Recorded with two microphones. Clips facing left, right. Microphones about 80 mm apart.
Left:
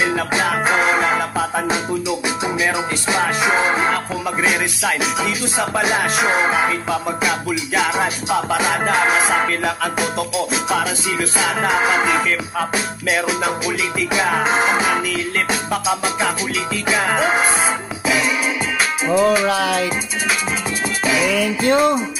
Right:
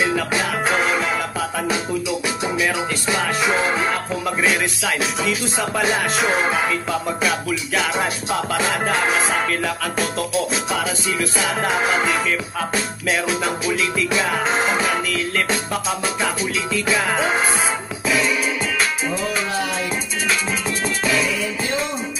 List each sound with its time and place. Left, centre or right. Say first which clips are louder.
0.0 s music: left 2 dB; left
1.7 s music: left 2 dB; left
19.4 s music: left 6 dB; left
21.2 s music: left 5 dB; left